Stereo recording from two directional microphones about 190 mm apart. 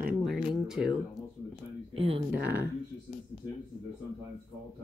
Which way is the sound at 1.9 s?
30° right (ahead or behind).